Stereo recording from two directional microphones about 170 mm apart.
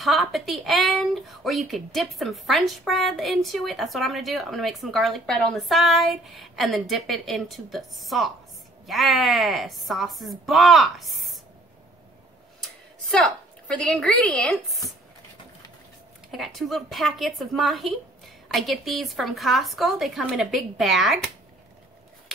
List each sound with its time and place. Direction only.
0.0 s speech: centre (ahead or behind)
13.0 s a woman's voice: centre (ahead or behind)
16.3 s speech: centre (ahead or behind)